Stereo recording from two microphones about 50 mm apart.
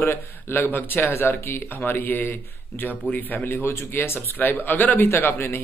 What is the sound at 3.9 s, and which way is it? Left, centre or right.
Speech, left.